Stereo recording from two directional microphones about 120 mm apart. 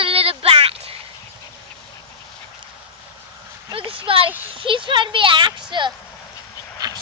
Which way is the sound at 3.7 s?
50° right (ahead or behind).